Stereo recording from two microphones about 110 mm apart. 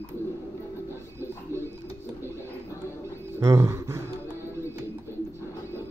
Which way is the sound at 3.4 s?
30° right (ahead or behind).